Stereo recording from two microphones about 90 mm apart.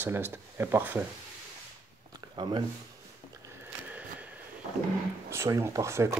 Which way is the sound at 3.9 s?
15° right (ahead or behind).